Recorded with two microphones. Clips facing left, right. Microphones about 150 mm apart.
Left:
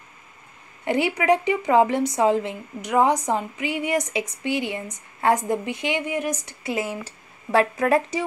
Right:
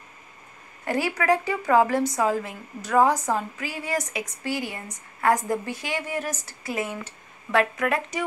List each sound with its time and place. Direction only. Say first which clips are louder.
0.8 s a woman's voice: left 3 dB; 20° left (ahead or behind)